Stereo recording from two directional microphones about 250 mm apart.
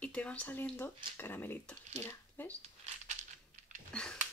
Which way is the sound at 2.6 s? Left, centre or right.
Right.